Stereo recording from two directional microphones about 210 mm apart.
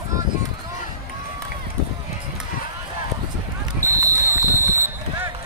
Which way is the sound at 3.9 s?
15° right (ahead or behind).